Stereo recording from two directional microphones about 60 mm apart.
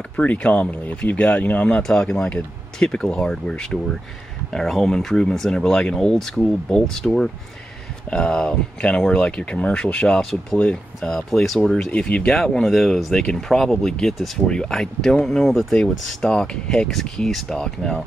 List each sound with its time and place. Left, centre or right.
0.1 s speech: left
1.8 s speech: centre
8.1 s speech: centre
11.0 s speech: centre
11.9 s speech: centre
14.5 s speech: centre